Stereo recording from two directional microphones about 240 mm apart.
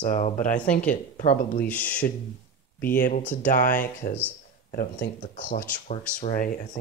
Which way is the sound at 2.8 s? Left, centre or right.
Left.